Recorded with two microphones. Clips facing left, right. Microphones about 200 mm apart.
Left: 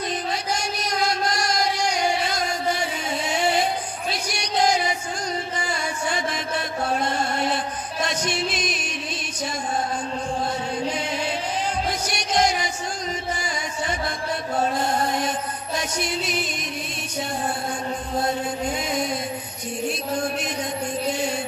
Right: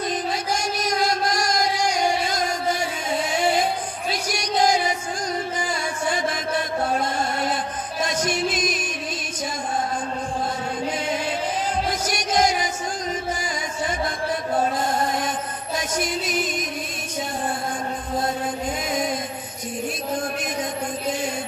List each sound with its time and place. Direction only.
8.0 s music: 50° right (ahead or behind)
12.1 s music: 45° right (ahead or behind)